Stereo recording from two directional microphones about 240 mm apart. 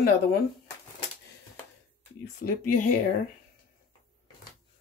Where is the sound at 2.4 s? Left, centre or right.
Left.